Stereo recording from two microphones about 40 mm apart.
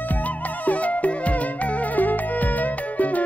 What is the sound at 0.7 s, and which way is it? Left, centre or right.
Music, left.